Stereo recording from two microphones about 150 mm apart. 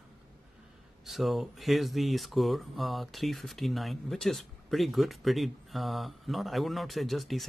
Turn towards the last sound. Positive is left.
turn(degrees=0)  # may be behind; listen again after turning